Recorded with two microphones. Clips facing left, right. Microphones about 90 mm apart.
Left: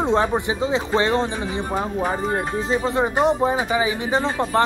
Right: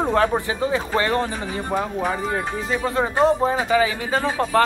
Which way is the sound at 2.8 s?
15° left (ahead or behind).